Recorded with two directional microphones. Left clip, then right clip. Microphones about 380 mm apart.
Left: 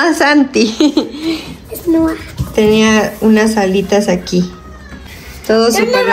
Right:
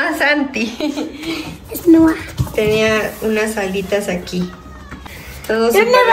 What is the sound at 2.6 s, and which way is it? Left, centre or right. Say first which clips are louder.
A woman's voice: left 4 dB; centre.